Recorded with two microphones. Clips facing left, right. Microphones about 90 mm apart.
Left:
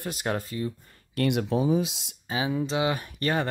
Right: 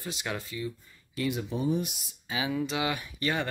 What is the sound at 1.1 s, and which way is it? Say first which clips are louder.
Speech: left 6 dB; 75° left (ahead or behind).